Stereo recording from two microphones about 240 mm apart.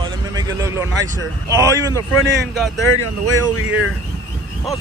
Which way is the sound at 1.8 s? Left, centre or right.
Centre.